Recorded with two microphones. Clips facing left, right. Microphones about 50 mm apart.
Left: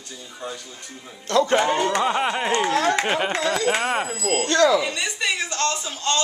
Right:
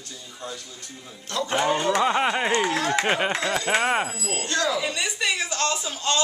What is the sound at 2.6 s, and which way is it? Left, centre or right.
Speech, left.